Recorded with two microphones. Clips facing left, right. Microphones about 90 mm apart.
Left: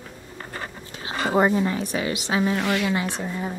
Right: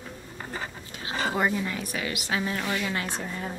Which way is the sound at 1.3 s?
30° left (ahead or behind).